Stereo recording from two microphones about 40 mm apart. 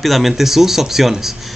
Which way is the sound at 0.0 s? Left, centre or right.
Centre.